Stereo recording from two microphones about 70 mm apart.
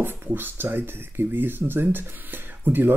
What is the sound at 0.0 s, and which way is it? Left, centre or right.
Speech, right.